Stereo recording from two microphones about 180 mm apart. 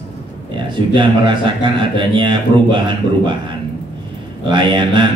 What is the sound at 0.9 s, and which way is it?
A man's voice, 25° right (ahead or behind).